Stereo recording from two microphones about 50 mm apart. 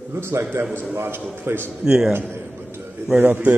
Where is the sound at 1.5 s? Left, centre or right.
Right.